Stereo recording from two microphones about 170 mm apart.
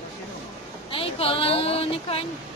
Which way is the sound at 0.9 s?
35° left (ahead or behind).